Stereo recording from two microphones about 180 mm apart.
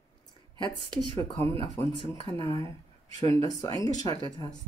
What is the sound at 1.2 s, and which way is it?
Speech, 20° left (ahead or behind).